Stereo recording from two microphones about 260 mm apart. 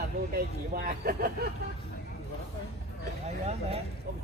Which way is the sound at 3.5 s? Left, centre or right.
Right.